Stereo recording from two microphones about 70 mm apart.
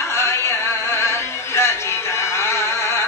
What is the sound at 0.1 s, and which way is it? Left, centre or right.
Music, left.